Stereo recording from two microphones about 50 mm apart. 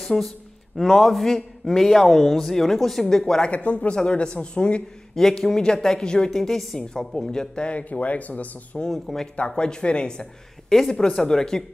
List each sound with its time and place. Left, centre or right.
0.0 s a man's voice: centre
3.4 s speech: left
5.1 s a woman's voice: centre; by 8.5 s left
8.9 s a man's voice: centre
9.6 s a woman's voice: centre